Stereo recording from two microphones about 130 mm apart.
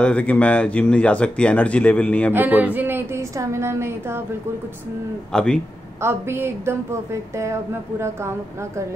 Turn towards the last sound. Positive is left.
turn(degrees=-20)  # may be behind; listen again after turning